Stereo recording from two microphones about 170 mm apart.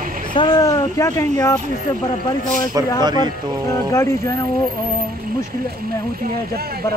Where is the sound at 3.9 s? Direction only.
15° left (ahead or behind).